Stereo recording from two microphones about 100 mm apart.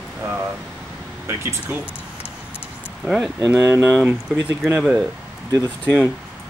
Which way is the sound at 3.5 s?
25° right (ahead or behind).